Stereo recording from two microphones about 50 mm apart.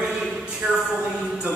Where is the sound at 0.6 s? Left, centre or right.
Right.